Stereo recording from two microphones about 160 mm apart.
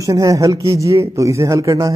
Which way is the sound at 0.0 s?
20° right (ahead or behind).